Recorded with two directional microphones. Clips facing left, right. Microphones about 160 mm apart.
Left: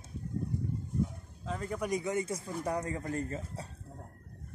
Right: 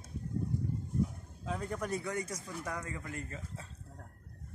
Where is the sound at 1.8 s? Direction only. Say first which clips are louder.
Left 4 dB; 15° left (ahead or behind); by 3.6 s 40° left (ahead or behind).